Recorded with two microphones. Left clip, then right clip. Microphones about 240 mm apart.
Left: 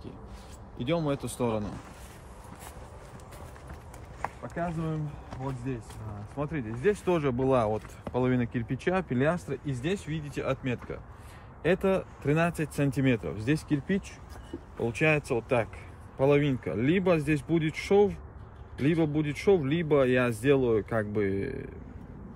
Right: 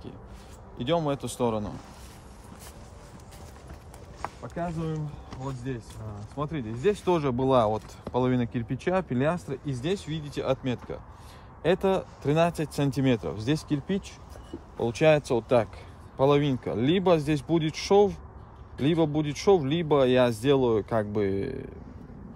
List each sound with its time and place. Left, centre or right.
0.7 s speech: right
1.2 s speech: centre
4.2 s clip-clop: centre
6.3 s speech: right
9.7 s speech: centre
10.0 s speech: right
14.8 s speech: right